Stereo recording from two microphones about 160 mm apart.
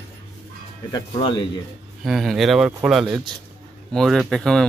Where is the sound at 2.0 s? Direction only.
Centre (ahead or behind).